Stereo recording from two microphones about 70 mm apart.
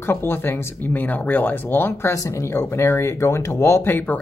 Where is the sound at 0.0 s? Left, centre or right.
Left.